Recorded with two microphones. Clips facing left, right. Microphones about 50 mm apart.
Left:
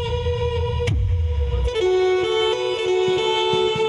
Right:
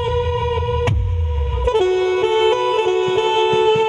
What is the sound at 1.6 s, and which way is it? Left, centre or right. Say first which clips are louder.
Music: right 3 dB; right.